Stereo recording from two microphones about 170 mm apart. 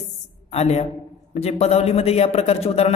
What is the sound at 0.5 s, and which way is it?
A woman's voice, 40° left (ahead or behind).